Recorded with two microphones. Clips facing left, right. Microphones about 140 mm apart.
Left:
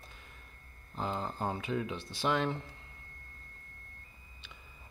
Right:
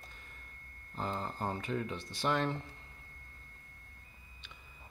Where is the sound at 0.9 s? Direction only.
20° left (ahead or behind).